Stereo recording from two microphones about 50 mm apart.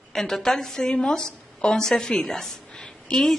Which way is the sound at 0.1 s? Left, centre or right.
Centre.